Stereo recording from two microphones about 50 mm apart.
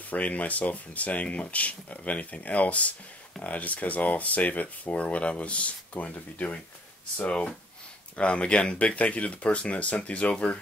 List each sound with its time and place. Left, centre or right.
0.1 s speech: left